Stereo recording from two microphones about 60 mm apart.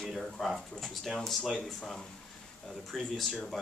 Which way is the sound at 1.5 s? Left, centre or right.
Centre.